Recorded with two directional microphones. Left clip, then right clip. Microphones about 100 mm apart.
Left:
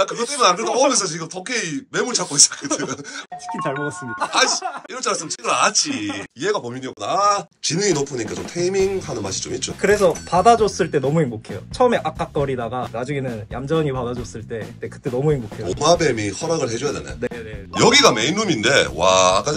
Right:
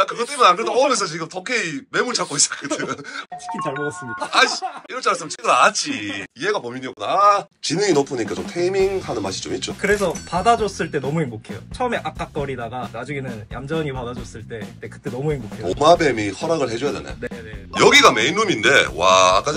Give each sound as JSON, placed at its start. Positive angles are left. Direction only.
{"t": 0.0, "sound": "speech", "side_deg": 30}
{"t": 3.4, "sound": "speech", "side_deg": 0}
{"t": 4.3, "sound": "speech", "side_deg": 25}
{"t": 5.4, "sound": "speech", "side_deg": 15}
{"t": 6.4, "sound": "speech", "side_deg": 35}
{"t": 10.3, "sound": "speech", "side_deg": 90}
{"t": 15.6, "sound": "speech", "side_deg": 10}
{"t": 17.7, "sound": "speech", "side_deg": 30}